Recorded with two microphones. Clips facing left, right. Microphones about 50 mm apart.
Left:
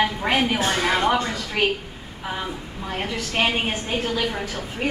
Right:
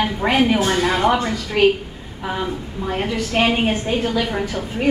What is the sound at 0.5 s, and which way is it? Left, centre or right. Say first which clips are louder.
Speech: right 3 dB; right.